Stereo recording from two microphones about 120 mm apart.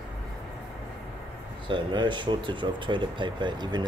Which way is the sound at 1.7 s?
40° right (ahead or behind).